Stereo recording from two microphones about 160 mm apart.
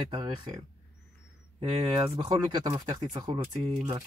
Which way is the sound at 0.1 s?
35° right (ahead or behind).